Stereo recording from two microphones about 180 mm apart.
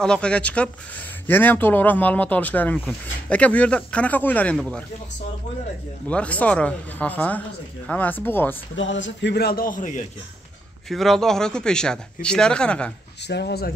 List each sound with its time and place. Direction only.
0.0 s speech: 5° left (ahead or behind)
6.0 s speech: 5° left (ahead or behind)
8.7 s a man's voice: 90° left; by 10.0 s 45° left (ahead or behind)
10.9 s speech: centre (ahead or behind)
13.3 s a man's voice: 65° left (ahead or behind)